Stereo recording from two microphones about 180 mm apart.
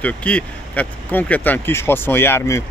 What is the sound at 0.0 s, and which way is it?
Speech, 5° left (ahead or behind).